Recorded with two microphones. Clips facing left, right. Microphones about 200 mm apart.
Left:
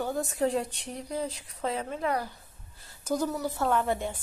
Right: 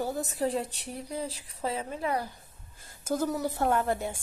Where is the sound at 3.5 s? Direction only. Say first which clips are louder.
Even; 55° right (ahead or behind).